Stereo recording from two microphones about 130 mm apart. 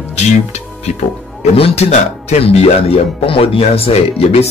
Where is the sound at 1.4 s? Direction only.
55° left (ahead or behind).